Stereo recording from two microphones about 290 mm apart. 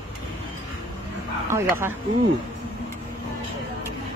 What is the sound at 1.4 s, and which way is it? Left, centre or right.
Speech, centre.